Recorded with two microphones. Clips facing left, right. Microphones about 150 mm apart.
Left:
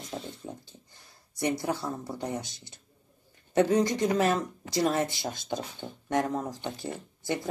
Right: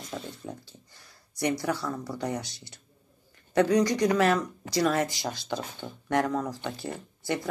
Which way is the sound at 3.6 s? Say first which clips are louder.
Right 1 dB; 25° left (ahead or behind).